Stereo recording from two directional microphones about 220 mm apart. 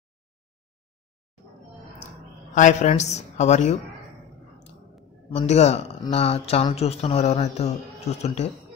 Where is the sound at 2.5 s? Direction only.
35° left (ahead or behind).